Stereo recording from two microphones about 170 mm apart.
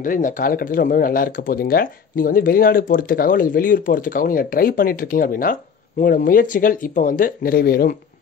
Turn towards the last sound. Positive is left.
turn(degrees=60)  # may be behind; listen again after turning